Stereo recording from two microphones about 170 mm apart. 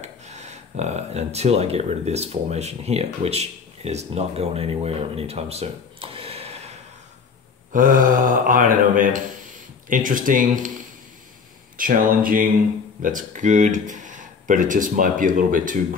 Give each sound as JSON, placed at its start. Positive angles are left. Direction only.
{"t": 0.0, "sound": "speech", "side_deg": -40}
{"t": 7.7, "sound": "speech", "side_deg": -50}
{"t": 11.7, "sound": "speech", "side_deg": -55}